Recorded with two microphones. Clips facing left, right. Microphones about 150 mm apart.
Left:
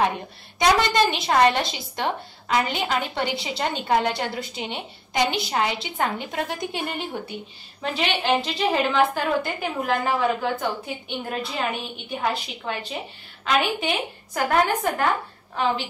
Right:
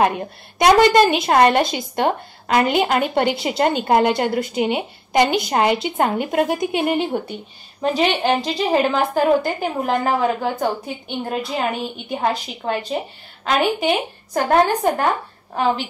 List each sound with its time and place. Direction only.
0.0 s a woman's voice: 60° right (ahead or behind)
7.8 s a woman's voice: 40° right (ahead or behind)